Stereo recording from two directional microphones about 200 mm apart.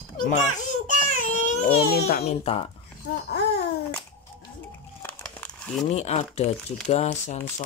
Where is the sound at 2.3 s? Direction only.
30° left (ahead or behind).